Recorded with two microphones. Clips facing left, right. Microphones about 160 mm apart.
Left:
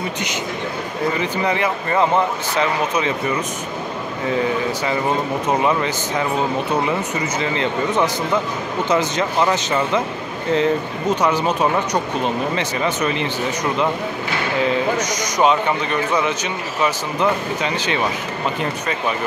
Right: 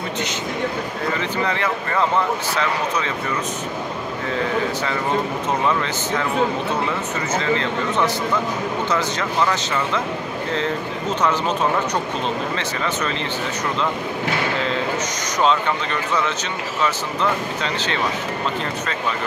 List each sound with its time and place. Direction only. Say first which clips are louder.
1.2 s speech: left 2 dB; 15° left (ahead or behind)
5.7 s speech: left 2 dB; 15° left (ahead or behind)
11.1 s speech: left 1 dB; 15° left (ahead or behind)
15.3 s speech: left 2 dB; 15° left (ahead or behind)
17.7 s speech: left 2 dB; 15° left (ahead or behind)